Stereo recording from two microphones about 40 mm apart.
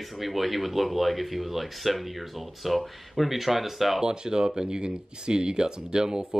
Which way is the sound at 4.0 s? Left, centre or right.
Centre.